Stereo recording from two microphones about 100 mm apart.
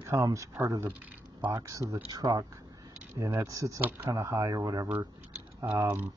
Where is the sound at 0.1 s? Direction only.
30° right (ahead or behind).